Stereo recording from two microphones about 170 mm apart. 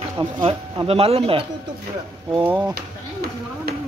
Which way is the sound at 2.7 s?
65° right (ahead or behind).